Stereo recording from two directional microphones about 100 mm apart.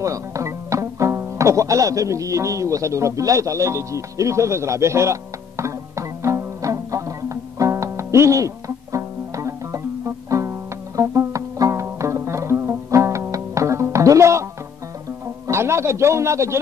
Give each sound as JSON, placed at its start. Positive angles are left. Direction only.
{"t": 0.0, "sound": "music", "side_deg": -30}
{"t": 15.4, "sound": "a man's voice", "side_deg": -25}